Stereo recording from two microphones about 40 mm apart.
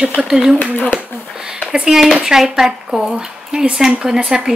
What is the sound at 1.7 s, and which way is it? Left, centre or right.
Speech, centre.